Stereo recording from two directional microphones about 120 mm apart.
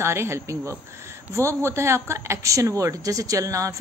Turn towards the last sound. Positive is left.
turn(degrees=-25)  # may be behind; listen again after turning